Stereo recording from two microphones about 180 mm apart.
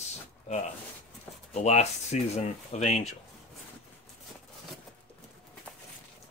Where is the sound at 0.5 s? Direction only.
40° left (ahead or behind).